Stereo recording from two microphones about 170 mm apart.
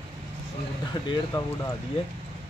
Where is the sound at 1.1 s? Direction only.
20° left (ahead or behind).